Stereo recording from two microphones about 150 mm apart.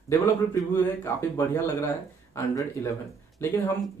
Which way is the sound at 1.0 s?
20° left (ahead or behind).